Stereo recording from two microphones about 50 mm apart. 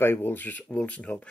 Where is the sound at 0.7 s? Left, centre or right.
Left.